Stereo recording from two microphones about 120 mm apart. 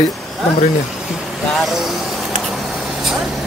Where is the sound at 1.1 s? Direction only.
Centre (ahead or behind).